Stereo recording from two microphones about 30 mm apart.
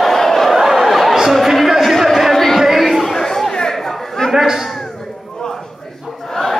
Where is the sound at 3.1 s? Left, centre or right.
Centre.